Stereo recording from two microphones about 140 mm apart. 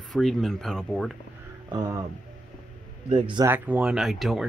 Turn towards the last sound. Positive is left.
turn(degrees=0)  # may be behind; listen again after turning